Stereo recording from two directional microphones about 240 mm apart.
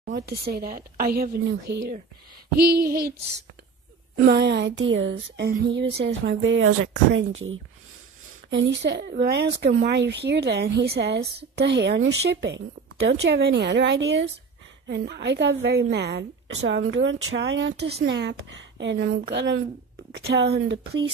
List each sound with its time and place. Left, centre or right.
0.1 s a woman's voice: right
4.3 s a woman's voice: right